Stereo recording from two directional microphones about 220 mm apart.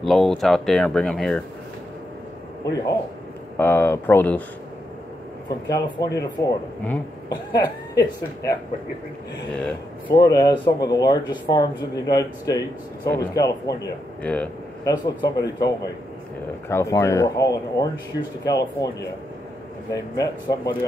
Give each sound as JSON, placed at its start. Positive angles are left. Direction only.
{"t": 0.0, "sound": "speech", "side_deg": 0}
{"t": 3.5, "sound": "speech", "side_deg": 10}
{"t": 5.7, "sound": "speech", "side_deg": 20}
{"t": 9.5, "sound": "speech", "side_deg": 5}
{"t": 10.1, "sound": "speech", "side_deg": 15}
{"t": 19.9, "sound": "speech", "side_deg": 20}